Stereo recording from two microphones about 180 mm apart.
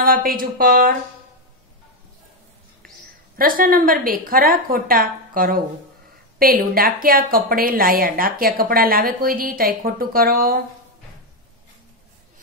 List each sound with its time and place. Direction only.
0.0 s a woman's voice: 55° right (ahead or behind)
3.3 s a woman's voice: 50° right (ahead or behind)